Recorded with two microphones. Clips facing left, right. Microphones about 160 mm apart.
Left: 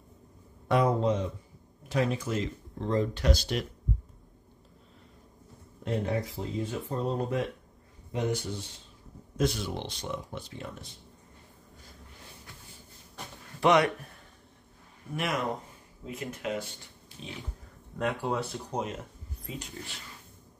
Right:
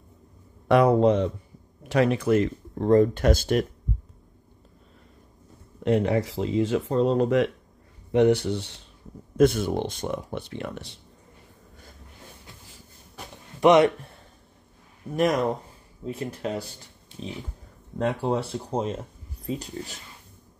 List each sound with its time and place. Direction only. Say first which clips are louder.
0.7 s speech: right 7 dB; 70° right (ahead or behind); by 3.6 s 50° right (ahead or behind)
5.9 s speech: right 8 dB; 80° right
8.1 s speech: right 11 dB; 70° right (ahead or behind)
9.4 s speech: right 9 dB; 50° right (ahead or behind); by 11.0 s 75° right (ahead or behind)
13.6 s speech: right 6 dB; 20° right (ahead or behind)
15.1 s speech: right 8 dB; 40° right (ahead or behind)
17.9 s speech: right 5 dB; 30° right (ahead or behind)